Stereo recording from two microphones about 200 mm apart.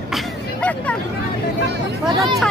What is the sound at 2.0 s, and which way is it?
Speech, centre (ahead or behind).